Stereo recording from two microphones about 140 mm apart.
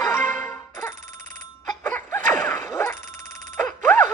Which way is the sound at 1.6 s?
10° left (ahead or behind).